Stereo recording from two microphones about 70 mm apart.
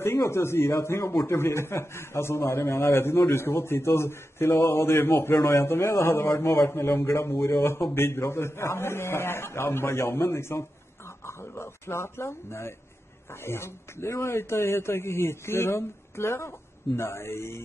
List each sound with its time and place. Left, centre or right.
0.0 s a man's voice: left